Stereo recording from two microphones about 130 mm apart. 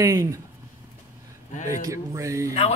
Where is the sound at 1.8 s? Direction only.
25° right (ahead or behind).